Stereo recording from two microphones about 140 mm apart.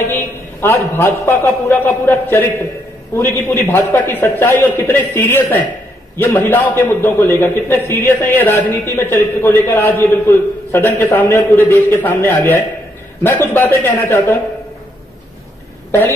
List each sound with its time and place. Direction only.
0.0 s a man's voice: 15° left (ahead or behind)